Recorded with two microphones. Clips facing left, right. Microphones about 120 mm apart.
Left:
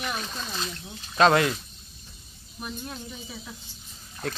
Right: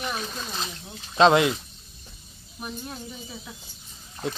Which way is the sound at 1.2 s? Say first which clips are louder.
Right 2 dB; 20° right (ahead or behind).